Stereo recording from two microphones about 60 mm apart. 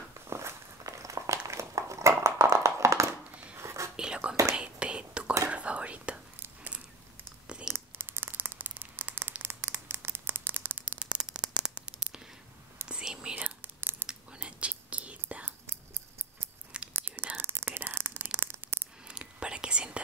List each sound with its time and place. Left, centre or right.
0.3 s walk: right
1.5 s a sound: right
3.5 s whispering: right
3.9 s whispering: centre
7.4 s a sound: centre
7.7 s crumpling: right
9.4 s a sound: right
11.0 s a sound: centre
12.8 s whispering: centre
13.6 s whispering: right
14.0 s whispering: centre
16.9 s whispering: right
19.0 s whispering: centre